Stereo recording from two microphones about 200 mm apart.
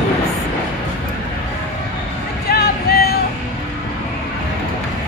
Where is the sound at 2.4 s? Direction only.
50° left (ahead or behind).